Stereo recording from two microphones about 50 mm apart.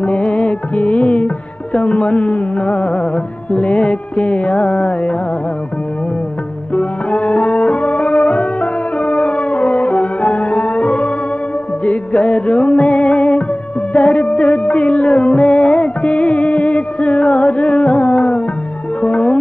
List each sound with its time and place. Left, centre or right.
0.0 s music: left
6.7 s music: left